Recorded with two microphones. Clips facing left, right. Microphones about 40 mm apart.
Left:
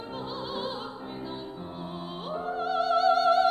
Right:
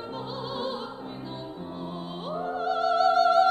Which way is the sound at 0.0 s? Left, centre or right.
Centre.